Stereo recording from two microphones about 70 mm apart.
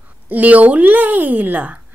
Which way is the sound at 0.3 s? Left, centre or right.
Right.